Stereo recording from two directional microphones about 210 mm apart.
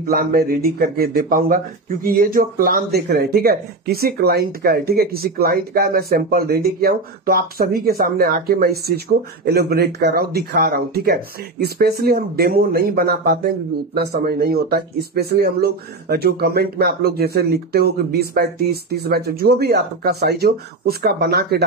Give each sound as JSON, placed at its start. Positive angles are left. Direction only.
{"t": 0.1, "sound": "speech", "side_deg": -45}